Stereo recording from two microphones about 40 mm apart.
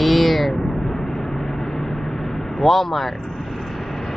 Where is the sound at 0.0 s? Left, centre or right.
Centre.